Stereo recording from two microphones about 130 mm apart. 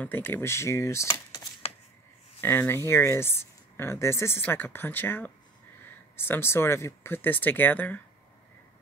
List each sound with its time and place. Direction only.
0.0 s speech: 15° left (ahead or behind)
2.4 s speech: 15° left (ahead or behind)